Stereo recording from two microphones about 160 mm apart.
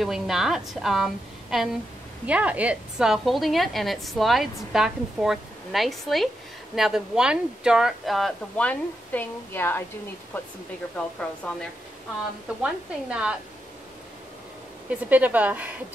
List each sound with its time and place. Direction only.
0.0 s a woman's voice: 5° right (ahead or behind)
12.6 s a woman's voice: 5° right (ahead or behind)
14.9 s a woman's voice: 10° right (ahead or behind)